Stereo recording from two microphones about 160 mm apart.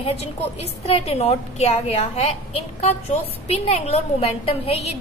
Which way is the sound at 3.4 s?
40° left (ahead or behind).